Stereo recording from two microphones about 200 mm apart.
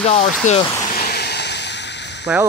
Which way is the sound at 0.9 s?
55° left (ahead or behind).